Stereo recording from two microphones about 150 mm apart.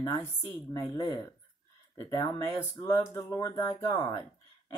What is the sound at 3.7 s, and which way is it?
Speech, 35° left (ahead or behind).